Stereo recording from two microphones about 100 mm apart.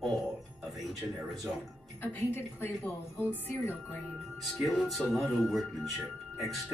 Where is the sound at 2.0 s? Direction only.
20° left (ahead or behind).